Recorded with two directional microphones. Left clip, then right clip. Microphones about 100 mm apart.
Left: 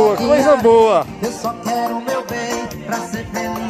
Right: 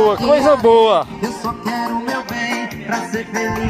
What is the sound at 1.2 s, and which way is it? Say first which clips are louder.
Music: left 1 dB; 90° left.